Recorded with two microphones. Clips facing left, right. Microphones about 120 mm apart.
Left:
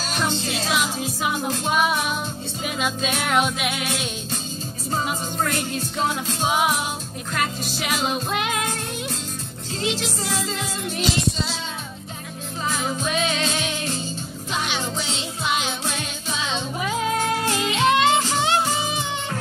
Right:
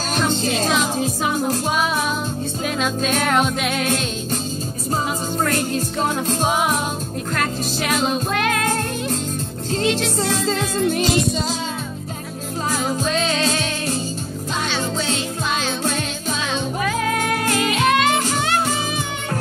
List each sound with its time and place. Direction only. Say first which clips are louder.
0.5 s music: right 5 dB; 45° right (ahead or behind)
2.6 s music: right 3 dB; 15° left (ahead or behind)
3.7 s music: right 6 dB; 45° right (ahead or behind)
5.5 s music: right 5 dB; 40° right (ahead or behind)
7.3 s music: right 2 dB; 15° left (ahead or behind)
9.7 s music: right 6 dB; 65° right (ahead or behind)
10.9 s music: right 4 dB; 50° right (ahead or behind)
13.0 s music: right 2 dB; 15° left (ahead or behind)
14.7 s music: right 5 dB; 15° left (ahead or behind)
16.8 s music: even; 20° left (ahead or behind)